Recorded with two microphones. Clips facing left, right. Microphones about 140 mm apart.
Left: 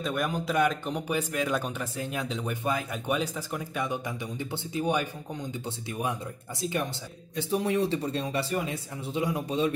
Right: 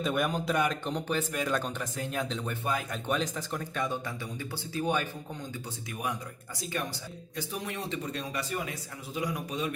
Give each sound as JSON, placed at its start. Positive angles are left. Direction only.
{"t": 0.0, "sound": "speech", "side_deg": 0}
{"t": 7.3, "sound": "speech", "side_deg": 35}